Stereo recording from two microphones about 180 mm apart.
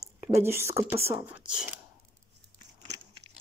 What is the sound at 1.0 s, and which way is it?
Speech, 10° right (ahead or behind).